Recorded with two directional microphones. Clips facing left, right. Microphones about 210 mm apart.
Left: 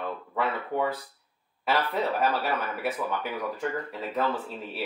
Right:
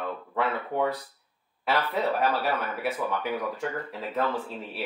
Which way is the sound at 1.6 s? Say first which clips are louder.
Even; centre (ahead or behind).